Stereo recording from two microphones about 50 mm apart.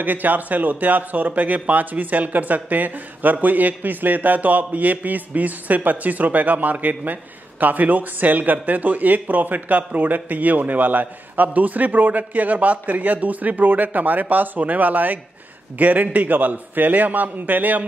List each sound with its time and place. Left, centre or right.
0.0 s speech: right